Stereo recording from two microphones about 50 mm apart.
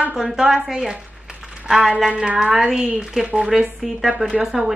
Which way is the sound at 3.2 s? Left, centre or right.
Right.